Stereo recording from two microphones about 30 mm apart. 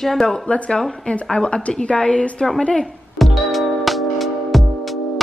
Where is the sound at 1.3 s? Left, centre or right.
Left.